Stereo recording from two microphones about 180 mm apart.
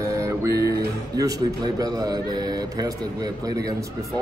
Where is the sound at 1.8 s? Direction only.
20° right (ahead or behind).